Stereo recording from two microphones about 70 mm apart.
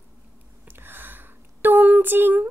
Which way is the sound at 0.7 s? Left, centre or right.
Right.